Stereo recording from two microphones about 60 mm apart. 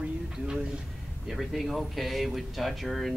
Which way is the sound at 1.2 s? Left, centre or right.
Centre.